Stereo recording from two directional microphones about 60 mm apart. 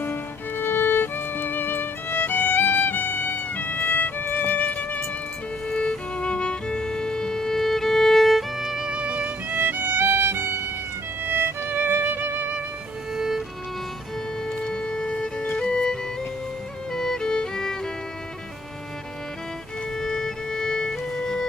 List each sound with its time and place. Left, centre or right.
0.0 s music: left
5.7 s violin: centre; by 9.6 s right
9.6 s music: right
13.1 s music: centre
14.5 s music: centre
20.0 s music: centre